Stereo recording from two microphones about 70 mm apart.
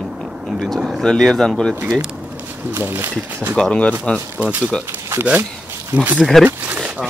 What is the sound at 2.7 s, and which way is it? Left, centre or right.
Speech, right.